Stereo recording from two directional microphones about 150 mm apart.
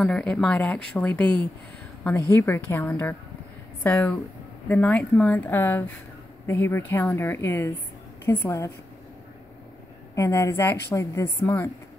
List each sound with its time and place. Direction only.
0.0 s a woman's voice: 5° left (ahead or behind)
10.1 s a woman's voice: 20° left (ahead or behind)